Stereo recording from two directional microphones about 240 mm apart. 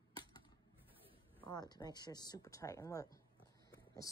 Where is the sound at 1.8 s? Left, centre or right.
Centre.